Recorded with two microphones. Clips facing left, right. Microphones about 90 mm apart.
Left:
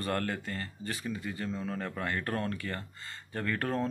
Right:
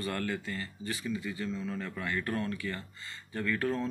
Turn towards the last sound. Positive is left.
turn(degrees=45)  # may be behind; listen again after turning